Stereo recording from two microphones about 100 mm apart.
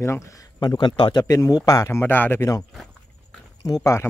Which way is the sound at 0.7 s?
50° left (ahead or behind).